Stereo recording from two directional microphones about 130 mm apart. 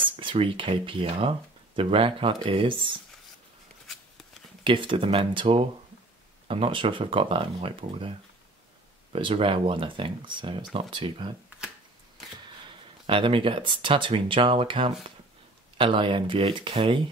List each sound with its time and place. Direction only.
0.0 s speech: 40° right (ahead or behind)
3.8 s a sound: centre (ahead or behind)
4.6 s speech: 40° right (ahead or behind)
9.1 s speech: 45° right (ahead or behind)
13.0 s speech: 45° right (ahead or behind)